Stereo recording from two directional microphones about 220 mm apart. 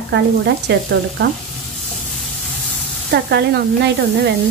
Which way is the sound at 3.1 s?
50° right (ahead or behind).